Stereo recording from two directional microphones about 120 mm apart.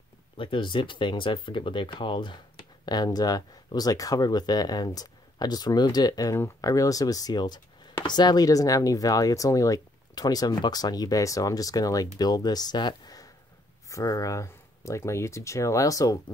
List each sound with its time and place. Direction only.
0.4 s speech: 45° left (ahead or behind); by 16.2 s 30° left (ahead or behind)